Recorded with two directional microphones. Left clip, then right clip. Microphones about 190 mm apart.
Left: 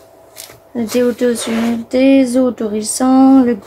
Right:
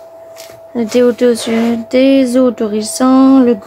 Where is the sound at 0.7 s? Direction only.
25° right (ahead or behind).